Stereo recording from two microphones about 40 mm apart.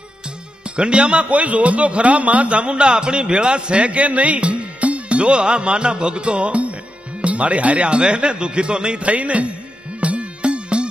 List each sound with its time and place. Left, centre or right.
0.7 s a man's voice: right
9.9 s music: right